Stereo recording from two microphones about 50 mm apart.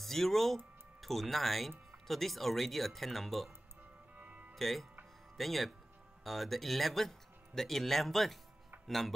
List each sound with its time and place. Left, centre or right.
0.0 s speech: centre
4.2 s music: right
4.6 s speech: centre